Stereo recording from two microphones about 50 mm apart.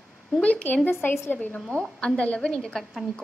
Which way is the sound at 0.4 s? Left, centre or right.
Left.